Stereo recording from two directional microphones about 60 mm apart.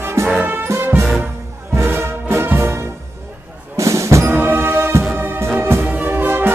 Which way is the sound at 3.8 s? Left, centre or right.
Right.